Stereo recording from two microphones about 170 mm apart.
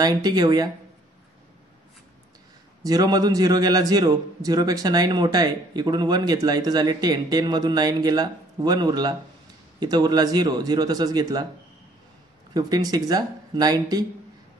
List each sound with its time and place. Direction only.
0.0 s a man's voice: 25° right (ahead or behind)
2.8 s a man's voice: 20° right (ahead or behind)
12.5 s a man's voice: 20° right (ahead or behind)